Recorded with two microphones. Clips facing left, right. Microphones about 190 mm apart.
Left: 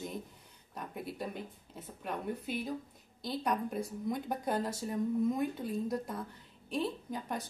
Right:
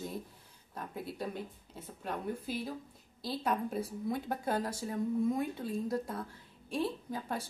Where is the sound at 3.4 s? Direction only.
5° right (ahead or behind).